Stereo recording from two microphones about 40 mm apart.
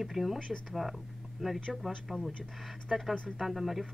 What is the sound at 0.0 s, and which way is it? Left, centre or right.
Speech, centre.